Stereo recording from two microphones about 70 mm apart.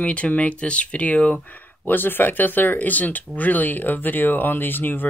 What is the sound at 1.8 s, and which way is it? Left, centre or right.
Speech, left.